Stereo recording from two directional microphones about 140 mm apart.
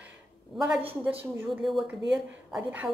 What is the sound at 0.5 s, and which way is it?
A woman's voice, 5° right (ahead or behind).